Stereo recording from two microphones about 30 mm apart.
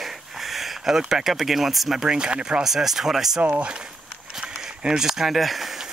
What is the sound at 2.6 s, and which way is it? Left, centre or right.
Speech, centre.